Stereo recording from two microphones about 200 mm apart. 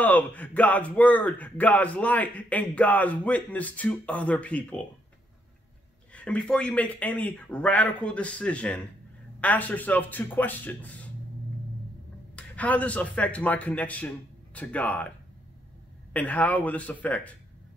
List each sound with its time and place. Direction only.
0.0 s speech: 10° left (ahead or behind)
6.1 s speech: 5° left (ahead or behind)
12.4 s speech: 5° left (ahead or behind)